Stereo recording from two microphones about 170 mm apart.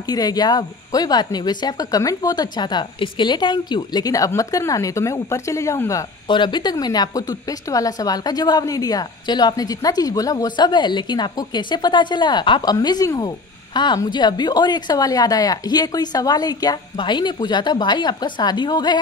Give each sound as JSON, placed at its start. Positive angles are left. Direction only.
{"t": 0.1, "sound": "speech", "side_deg": 20}